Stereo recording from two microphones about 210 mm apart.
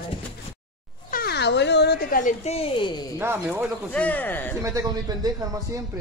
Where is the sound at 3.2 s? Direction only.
10° right (ahead or behind).